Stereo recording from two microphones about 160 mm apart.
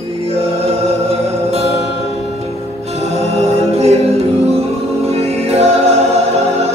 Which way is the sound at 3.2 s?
40° right (ahead or behind).